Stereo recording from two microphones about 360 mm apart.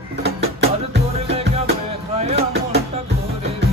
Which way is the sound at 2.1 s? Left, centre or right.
Centre.